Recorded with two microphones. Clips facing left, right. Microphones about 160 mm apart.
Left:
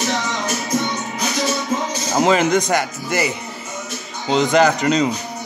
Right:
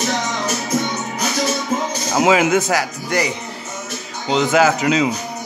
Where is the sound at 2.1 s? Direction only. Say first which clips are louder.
Right 1 dB; 5° right (ahead or behind).